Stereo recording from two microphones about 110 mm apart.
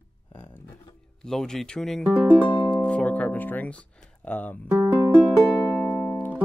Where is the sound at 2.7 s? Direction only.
10° left (ahead or behind).